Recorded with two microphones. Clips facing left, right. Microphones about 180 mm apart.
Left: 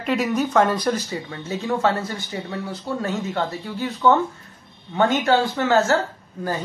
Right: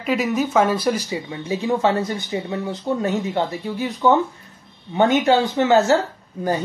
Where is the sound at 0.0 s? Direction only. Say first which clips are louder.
Right 1 dB; centre (ahead or behind).